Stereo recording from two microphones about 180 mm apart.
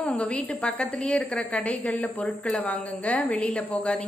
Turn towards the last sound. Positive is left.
turn(degrees=5)  # may be behind; listen again after turning